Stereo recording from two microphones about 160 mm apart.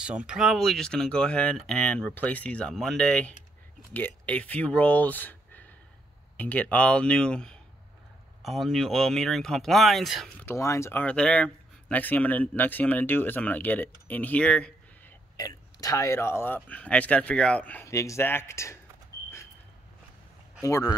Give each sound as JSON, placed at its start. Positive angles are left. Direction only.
{"t": 0.0, "sound": "speech", "side_deg": -5}
{"t": 10.4, "sound": "speech", "side_deg": 20}
{"t": 15.3, "sound": "speech", "side_deg": 20}
{"t": 20.6, "sound": "speech", "side_deg": 20}